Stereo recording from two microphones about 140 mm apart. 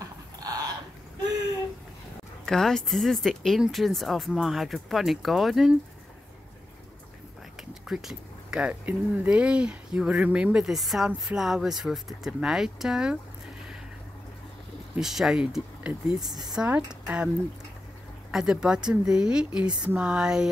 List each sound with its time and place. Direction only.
0.4 s a sound: 25° right (ahead or behind)
2.4 s speech: 5° left (ahead or behind)
7.9 s speech: 5° right (ahead or behind)
15.0 s speech: 5° right (ahead or behind)
18.3 s speech: 5° right (ahead or behind)